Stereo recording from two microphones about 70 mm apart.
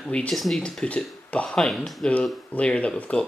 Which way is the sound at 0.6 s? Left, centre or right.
Centre.